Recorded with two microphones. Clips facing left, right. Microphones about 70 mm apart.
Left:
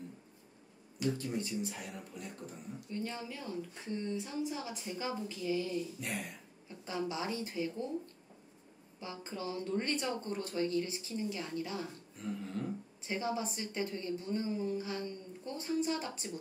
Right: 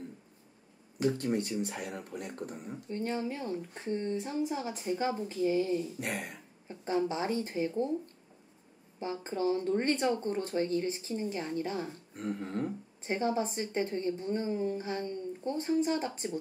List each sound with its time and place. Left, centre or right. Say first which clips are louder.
1.1 s speech: right 5 dB; right
2.9 s a woman's voice: right 7 dB; right
5.9 s speech: right 4 dB; right
6.7 s a woman's voice: right 7 dB; right
9.0 s a woman's voice: right 9 dB; right
12.2 s a woman's voice: right 5 dB; right